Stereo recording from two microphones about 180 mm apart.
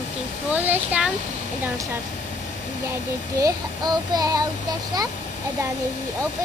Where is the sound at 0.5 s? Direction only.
10° right (ahead or behind).